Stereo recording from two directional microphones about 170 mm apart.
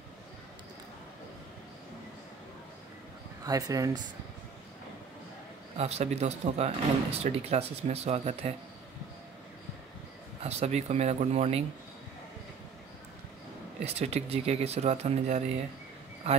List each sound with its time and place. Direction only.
3.4 s speech: 20° right (ahead or behind)
5.8 s speech: 40° right (ahead or behind)
10.4 s speech: 40° right (ahead or behind)
13.8 s speech: 40° right (ahead or behind)